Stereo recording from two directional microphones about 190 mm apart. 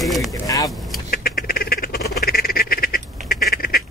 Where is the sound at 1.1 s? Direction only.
50° left (ahead or behind).